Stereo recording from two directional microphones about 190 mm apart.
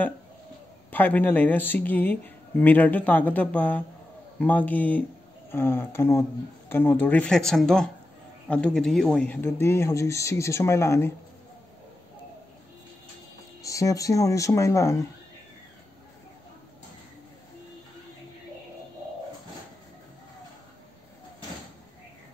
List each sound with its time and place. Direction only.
0.8 s speech: 10° left (ahead or behind)
13.6 s speech: 15° left (ahead or behind)